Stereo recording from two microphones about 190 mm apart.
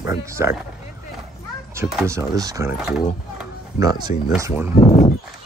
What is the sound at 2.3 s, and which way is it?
Speech, 20° right (ahead or behind).